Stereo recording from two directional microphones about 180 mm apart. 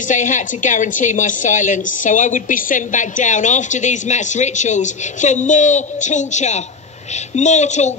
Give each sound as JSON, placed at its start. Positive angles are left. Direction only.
{"t": 0.1, "sound": "a woman's voice", "side_deg": 45}